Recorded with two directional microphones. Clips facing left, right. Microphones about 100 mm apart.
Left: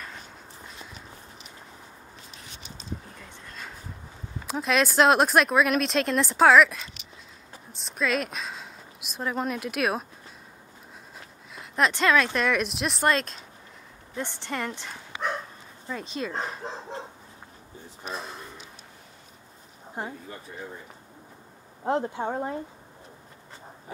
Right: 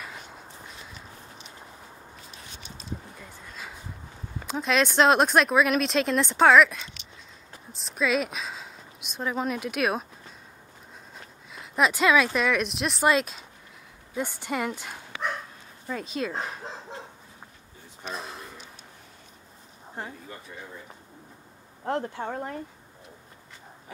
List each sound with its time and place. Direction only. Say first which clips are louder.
3.2 s a sound: even; 5° right (ahead or behind)
4.5 s a woman's voice: even; centre (ahead or behind)
11.1 s speech: even; centre (ahead or behind)
18.0 s a sound: even; centre (ahead or behind)
20.0 s speech: left 3 dB; 25° left (ahead or behind)
21.8 s speech: left 3 dB; 20° left (ahead or behind)